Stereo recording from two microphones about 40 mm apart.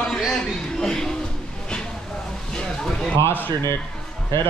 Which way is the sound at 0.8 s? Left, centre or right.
Centre.